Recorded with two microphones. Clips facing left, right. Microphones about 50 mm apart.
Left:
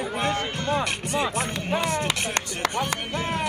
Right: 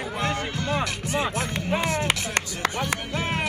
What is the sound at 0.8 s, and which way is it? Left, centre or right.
Speech, right.